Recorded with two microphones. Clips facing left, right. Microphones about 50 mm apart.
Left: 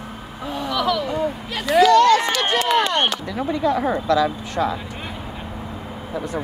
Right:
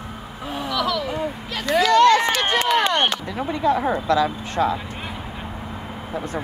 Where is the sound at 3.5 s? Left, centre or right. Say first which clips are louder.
Even; right.